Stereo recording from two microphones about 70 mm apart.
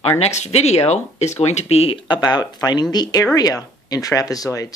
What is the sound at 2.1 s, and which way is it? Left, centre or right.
Speech, left.